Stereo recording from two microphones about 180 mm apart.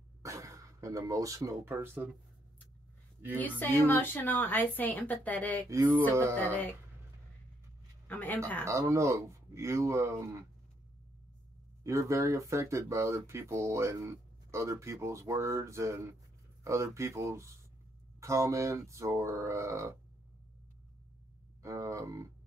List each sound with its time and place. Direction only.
0.2 s speech: 15° right (ahead or behind)
3.3 s a woman's voice: 10° left (ahead or behind)
5.7 s speech: 15° right (ahead or behind)
8.1 s a woman's voice: 10° left (ahead or behind)
8.6 s speech: 15° right (ahead or behind)
11.8 s speech: 15° right (ahead or behind)
21.6 s speech: 15° right (ahead or behind)